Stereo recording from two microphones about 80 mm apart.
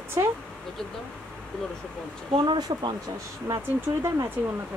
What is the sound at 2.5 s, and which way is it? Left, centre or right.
Speech, right.